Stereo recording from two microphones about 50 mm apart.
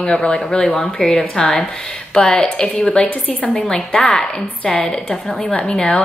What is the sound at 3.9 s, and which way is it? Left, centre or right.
A woman's voice, centre.